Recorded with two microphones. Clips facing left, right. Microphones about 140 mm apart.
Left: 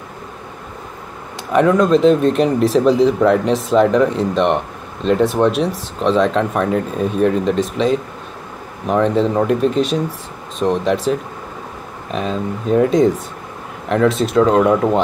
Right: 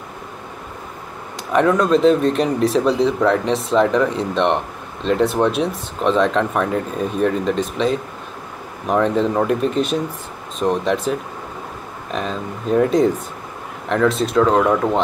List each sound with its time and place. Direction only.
1.5 s speech: centre (ahead or behind)
2.0 s speech: 40° left (ahead or behind)
2.8 s speech: 5° left (ahead or behind)
14.6 s speech: 15° left (ahead or behind)